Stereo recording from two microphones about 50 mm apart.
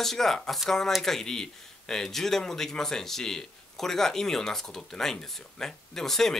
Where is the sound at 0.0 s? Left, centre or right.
Centre.